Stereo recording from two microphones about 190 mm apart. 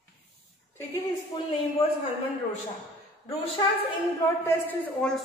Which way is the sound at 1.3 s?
20° left (ahead or behind).